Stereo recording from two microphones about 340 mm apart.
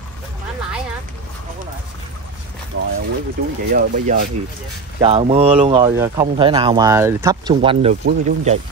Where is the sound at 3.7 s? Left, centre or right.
Right.